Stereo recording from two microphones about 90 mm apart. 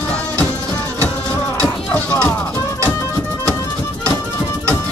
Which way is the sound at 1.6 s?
15° left (ahead or behind).